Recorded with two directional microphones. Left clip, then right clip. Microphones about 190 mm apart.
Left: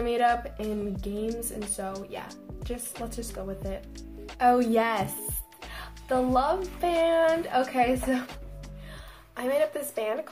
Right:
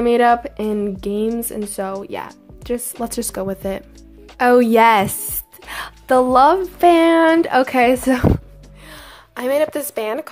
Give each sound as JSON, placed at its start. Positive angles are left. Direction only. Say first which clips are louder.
{"t": 0.0, "sound": "a woman's voice", "louder": "right 11 dB", "side_deg": -50}